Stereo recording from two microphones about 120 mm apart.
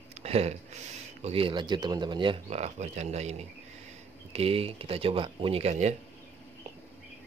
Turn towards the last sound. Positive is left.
turn(degrees=-65)  # may be behind; listen again after turning